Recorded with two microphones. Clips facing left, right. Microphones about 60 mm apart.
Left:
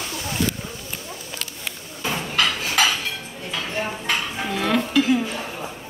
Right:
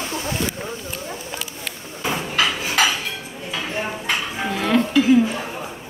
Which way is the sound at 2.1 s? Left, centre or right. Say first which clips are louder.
Right 1 dB; centre.